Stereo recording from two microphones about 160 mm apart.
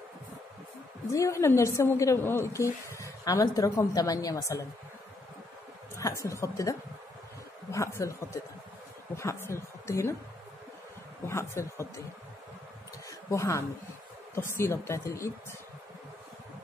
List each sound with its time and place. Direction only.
1.1 s a woman's voice: 20° left (ahead or behind)
5.9 s a woman's voice: 20° left (ahead or behind)
11.2 s a woman's voice: 15° left (ahead or behind)
13.3 s a woman's voice: 20° left (ahead or behind)